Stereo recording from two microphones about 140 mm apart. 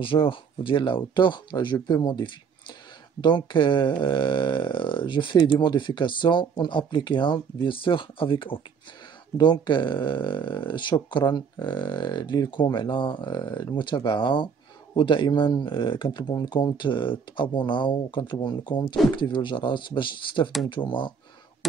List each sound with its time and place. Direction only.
0.0 s speech: 40° left (ahead or behind)